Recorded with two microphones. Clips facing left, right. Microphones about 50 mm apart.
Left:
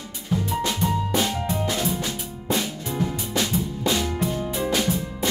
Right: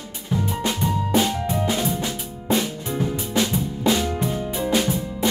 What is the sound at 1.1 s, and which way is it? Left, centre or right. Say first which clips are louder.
Music: right 3 dB; right.